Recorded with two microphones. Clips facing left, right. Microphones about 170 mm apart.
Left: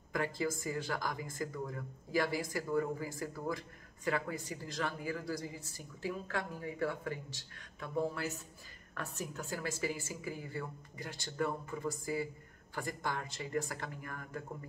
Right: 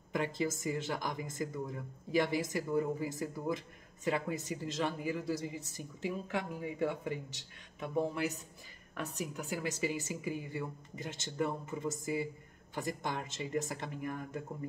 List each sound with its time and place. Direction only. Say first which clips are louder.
0.1 s speech: right 1 dB; 20° right (ahead or behind)